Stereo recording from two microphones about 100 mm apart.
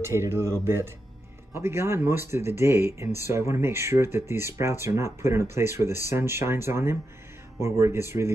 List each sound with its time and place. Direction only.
0.0 s speech: 25° right (ahead or behind)